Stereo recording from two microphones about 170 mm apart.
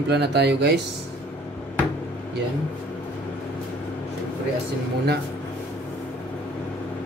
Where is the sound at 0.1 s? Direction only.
75° right (ahead or behind).